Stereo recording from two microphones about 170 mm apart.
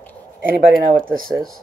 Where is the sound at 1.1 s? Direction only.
55° right (ahead or behind).